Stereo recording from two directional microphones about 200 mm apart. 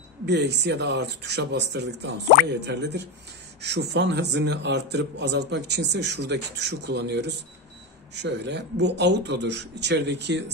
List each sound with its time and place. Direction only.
0.3 s a man's voice: 60° right (ahead or behind)